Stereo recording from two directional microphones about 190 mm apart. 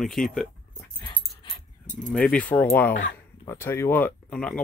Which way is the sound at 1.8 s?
40° left (ahead or behind).